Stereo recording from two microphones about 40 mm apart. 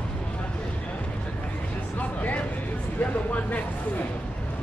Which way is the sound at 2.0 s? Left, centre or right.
Left.